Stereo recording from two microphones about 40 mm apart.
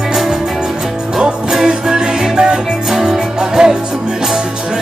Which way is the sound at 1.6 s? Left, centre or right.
Centre.